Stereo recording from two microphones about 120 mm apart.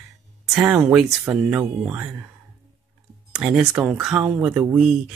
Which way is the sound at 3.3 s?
10° right (ahead or behind).